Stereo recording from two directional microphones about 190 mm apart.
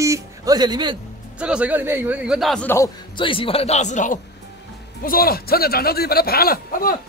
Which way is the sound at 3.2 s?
30° left (ahead or behind).